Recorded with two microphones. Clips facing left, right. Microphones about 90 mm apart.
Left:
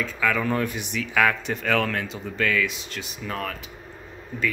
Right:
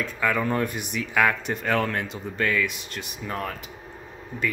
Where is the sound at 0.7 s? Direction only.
50° right (ahead or behind).